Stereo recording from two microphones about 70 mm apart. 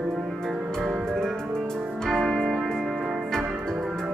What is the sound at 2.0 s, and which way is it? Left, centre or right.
Music, centre.